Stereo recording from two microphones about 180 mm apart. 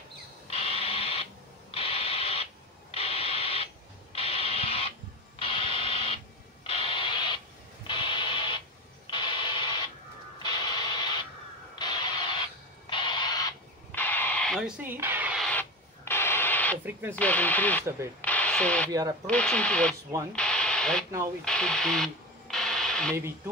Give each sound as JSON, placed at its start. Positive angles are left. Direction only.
{"t": 0.5, "sound": "a sound", "side_deg": 35}
{"t": 7.8, "sound": "radio", "side_deg": 25}
{"t": 9.1, "sound": "a sound", "side_deg": 25}
{"t": 12.9, "sound": "owl", "side_deg": 25}
{"t": 13.9, "sound": "radio", "side_deg": 10}
{"t": 14.8, "sound": "speech", "side_deg": -10}
{"t": 16.1, "sound": "radio", "side_deg": 15}
{"t": 17.1, "sound": "speech", "side_deg": 10}
{"t": 18.2, "sound": "radio", "side_deg": 10}
{"t": 18.9, "sound": "speech", "side_deg": -20}
{"t": 19.2, "sound": "speech", "side_deg": 5}
{"t": 20.3, "sound": "radio", "side_deg": 5}
{"t": 23.1, "sound": "speech", "side_deg": -15}